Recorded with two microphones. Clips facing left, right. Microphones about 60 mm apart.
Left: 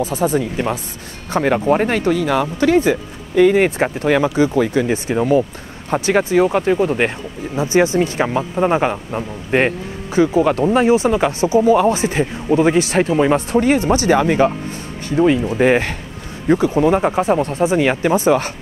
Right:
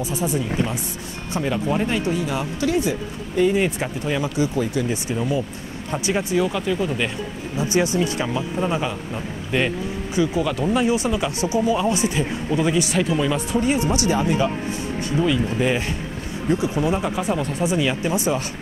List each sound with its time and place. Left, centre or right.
0.0 s speech: left
0.4 s speech: left
1.3 s speech: left
3.3 s speech: left
7.5 s speech: left
11.6 s speech: left
11.9 s speech: left
15.0 s speech: left